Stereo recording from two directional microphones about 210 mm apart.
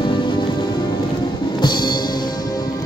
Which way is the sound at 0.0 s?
20° left (ahead or behind).